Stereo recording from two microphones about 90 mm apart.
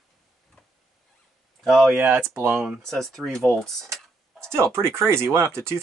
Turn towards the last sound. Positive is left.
turn(degrees=-30)  # may be behind; listen again after turning